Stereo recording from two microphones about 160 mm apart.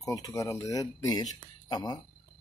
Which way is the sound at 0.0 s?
20° left (ahead or behind).